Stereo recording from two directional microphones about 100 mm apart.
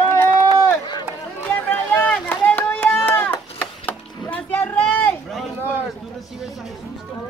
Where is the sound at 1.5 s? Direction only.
20° left (ahead or behind).